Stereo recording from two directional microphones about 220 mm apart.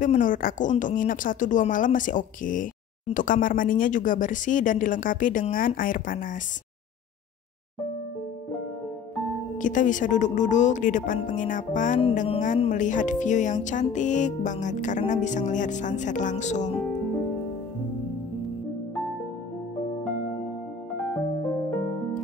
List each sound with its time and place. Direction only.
0.0 s speech: 35° left (ahead or behind)
9.6 s speech: 35° left (ahead or behind)